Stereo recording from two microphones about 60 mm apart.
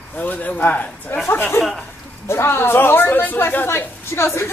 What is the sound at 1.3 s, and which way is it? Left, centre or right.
A woman's voice, left.